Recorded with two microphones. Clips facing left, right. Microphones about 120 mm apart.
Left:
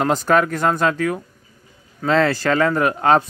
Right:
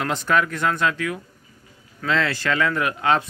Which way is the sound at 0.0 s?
40° left (ahead or behind).